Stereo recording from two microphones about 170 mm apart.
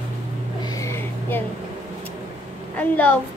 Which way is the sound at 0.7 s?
15° left (ahead or behind).